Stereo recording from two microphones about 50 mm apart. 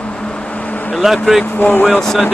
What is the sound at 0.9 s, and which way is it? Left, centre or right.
Speech, centre.